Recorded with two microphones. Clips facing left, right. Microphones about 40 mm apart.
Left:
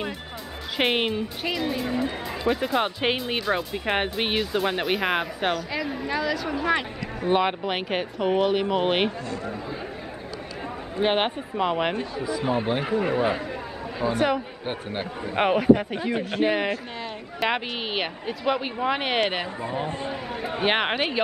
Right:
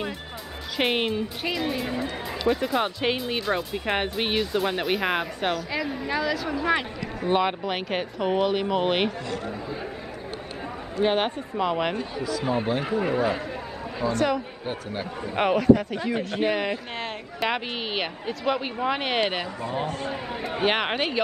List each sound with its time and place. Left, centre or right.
0.7 s speech: centre
1.4 s speech: centre
11.0 s speech: left
11.9 s speech: left
12.8 s speech: centre
14.0 s speech: centre
14.7 s speech: left
15.2 s speech: centre
20.6 s speech: centre